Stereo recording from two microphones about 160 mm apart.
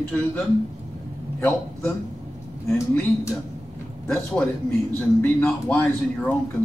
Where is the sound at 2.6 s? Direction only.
15° left (ahead or behind).